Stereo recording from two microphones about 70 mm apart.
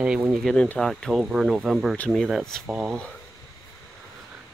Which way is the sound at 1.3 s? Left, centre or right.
Centre.